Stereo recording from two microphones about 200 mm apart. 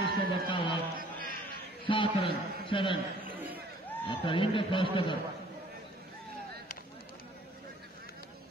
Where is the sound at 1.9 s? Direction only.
25° left (ahead or behind).